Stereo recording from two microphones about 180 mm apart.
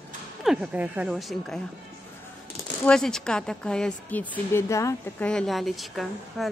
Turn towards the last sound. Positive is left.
turn(degrees=0)  # may be behind; listen again after turning